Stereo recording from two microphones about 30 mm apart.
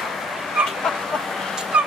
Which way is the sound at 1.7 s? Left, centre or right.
Right.